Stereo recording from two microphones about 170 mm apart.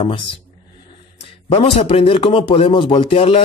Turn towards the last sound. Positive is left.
turn(degrees=35)  # may be behind; listen again after turning